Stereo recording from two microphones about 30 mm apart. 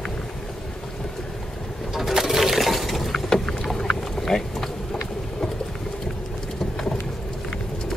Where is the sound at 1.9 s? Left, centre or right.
Centre.